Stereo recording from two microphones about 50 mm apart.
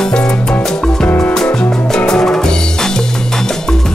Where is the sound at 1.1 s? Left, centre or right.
Left.